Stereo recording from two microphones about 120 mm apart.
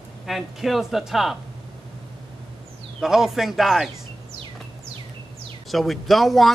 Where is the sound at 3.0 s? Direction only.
5° right (ahead or behind).